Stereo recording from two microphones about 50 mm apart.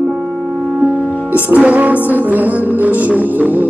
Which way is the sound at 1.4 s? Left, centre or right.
Right.